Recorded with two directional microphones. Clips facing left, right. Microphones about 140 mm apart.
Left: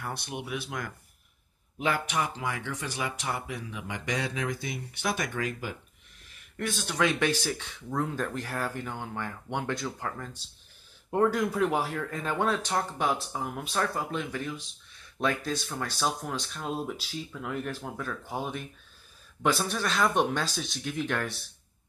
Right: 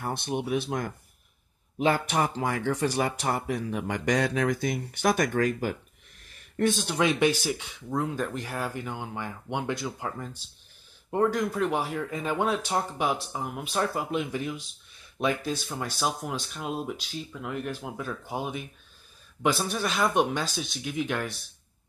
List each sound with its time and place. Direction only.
0.0 s speech: 30° right (ahead or behind); by 5.8 s 45° right (ahead or behind)
6.6 s speech: 25° right (ahead or behind)
11.1 s speech: centre (ahead or behind)